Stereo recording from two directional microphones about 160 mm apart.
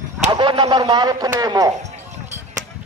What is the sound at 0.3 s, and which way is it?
Speech, 30° right (ahead or behind).